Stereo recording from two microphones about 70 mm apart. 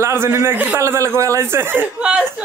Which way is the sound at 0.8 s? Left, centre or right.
Right.